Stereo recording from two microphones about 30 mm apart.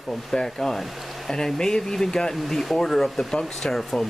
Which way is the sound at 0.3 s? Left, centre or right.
Centre.